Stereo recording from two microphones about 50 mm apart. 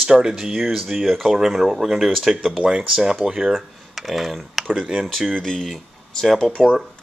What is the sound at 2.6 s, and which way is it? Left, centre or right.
Speech, centre.